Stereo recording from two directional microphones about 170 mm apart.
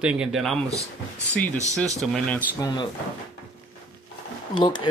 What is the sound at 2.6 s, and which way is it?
Speech, 25° left (ahead or behind).